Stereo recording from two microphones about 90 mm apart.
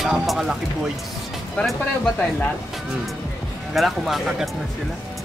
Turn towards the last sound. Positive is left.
turn(degrees=0)  # may be behind; listen again after turning